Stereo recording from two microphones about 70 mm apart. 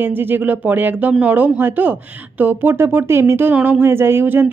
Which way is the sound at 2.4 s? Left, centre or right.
Right.